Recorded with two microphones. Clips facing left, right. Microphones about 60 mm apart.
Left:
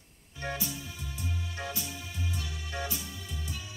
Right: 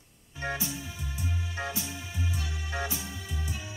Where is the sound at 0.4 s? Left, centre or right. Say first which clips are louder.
Right 2 dB; right.